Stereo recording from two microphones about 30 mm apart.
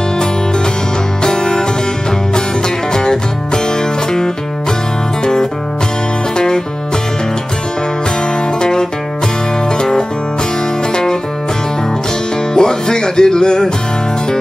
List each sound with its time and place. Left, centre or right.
1.2 s music: left
2.9 s music: left
8.5 s music: left
12.5 s music: left